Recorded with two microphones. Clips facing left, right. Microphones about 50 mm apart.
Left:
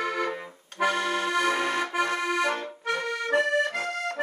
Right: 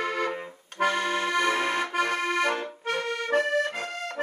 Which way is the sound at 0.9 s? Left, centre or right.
Right.